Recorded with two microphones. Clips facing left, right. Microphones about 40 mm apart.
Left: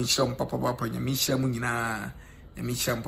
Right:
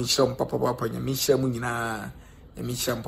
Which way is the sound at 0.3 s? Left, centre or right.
Left.